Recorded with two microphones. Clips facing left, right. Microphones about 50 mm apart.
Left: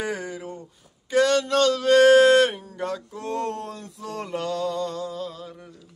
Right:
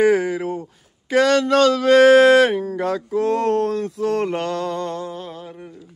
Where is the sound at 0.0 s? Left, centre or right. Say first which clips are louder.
Right 13 dB; right.